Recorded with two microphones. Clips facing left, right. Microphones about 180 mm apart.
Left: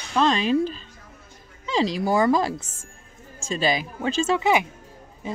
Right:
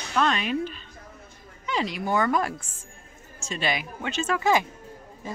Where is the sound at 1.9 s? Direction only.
35° left (ahead or behind).